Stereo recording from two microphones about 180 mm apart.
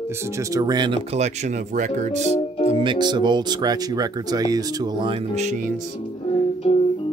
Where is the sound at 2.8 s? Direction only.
25° right (ahead or behind).